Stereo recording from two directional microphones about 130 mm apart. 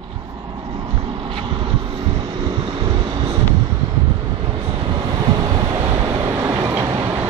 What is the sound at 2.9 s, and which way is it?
Vehicle, 40° right (ahead or behind).